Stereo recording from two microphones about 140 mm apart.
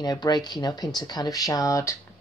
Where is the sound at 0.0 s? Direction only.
30° left (ahead or behind).